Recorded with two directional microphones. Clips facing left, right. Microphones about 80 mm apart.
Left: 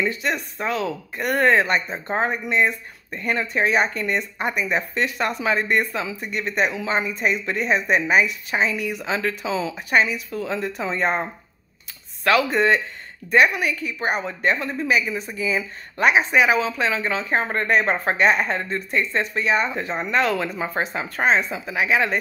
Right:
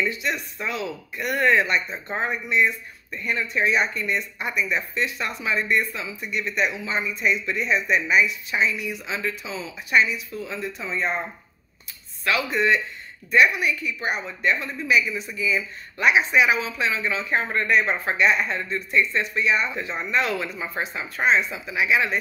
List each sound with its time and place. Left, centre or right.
0.0 s a woman's voice: left
12.3 s a woman's voice: left